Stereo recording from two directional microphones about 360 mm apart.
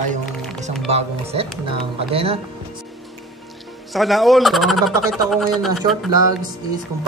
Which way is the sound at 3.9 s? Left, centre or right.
Centre.